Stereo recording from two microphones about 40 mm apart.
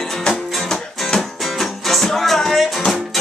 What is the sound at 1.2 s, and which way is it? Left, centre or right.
Music, centre.